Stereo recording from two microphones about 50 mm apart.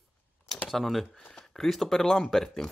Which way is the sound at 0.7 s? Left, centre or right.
Centre.